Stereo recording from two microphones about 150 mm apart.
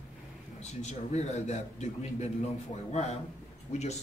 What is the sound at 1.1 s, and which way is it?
A man's voice, 50° left (ahead or behind).